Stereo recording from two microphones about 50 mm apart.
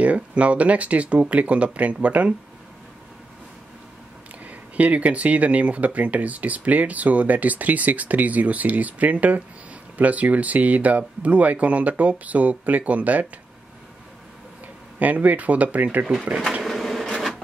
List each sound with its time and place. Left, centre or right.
0.0 s speech: right
4.5 s speech: right
15.0 s speech: right
16.6 s bee: centre